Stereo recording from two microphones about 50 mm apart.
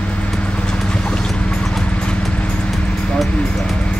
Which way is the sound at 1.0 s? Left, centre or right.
Centre.